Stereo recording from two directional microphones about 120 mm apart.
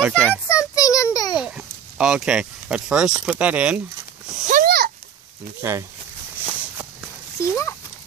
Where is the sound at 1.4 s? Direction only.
10° right (ahead or behind).